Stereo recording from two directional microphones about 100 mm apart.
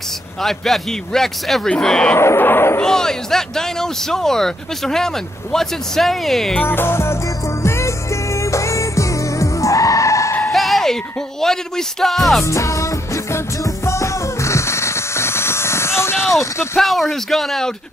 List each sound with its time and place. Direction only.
0.4 s a man's voice: centre (ahead or behind)
2.1 s speech: 25° left (ahead or behind)
2.8 s a man's voice: 5° left (ahead or behind)
6.5 s speech: 20° left (ahead or behind)
7.6 s music: 30° left (ahead or behind)
10.5 s music: centre (ahead or behind)
11.4 s a man's voice: 5° left (ahead or behind)
12.4 s music: 30° left (ahead or behind)
16.7 s a man's voice: centre (ahead or behind)